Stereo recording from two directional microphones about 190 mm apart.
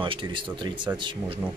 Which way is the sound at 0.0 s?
25° right (ahead or behind).